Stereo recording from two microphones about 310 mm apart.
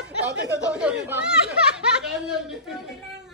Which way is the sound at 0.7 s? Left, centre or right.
Centre.